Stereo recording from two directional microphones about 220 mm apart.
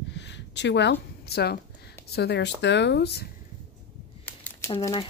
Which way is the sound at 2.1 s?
50° left (ahead or behind).